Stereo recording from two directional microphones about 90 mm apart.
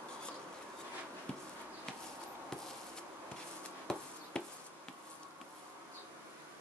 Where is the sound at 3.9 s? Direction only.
5° left (ahead or behind).